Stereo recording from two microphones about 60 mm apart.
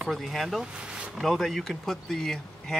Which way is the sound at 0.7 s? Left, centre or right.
Centre.